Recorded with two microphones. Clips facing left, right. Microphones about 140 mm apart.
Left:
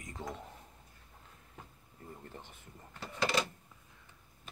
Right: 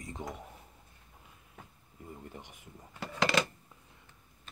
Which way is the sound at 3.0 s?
90° right.